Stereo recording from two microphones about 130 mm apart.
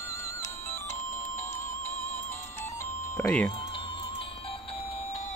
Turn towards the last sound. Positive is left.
turn(degrees=40)  # may be behind; listen again after turning